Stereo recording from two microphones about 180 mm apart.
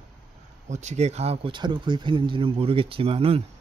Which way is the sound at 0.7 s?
40° right (ahead or behind).